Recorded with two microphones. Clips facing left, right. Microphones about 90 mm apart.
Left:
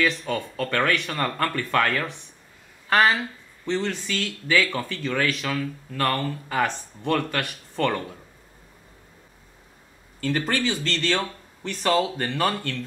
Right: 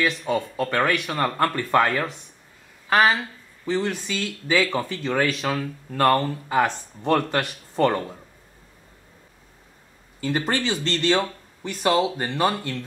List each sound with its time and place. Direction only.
0.3 s speech: 15° right (ahead or behind)
2.9 s speech: 10° right (ahead or behind)
10.2 s speech: 20° right (ahead or behind)